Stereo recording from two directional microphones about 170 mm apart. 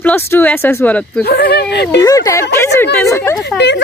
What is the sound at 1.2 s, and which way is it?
Speech, 65° left (ahead or behind).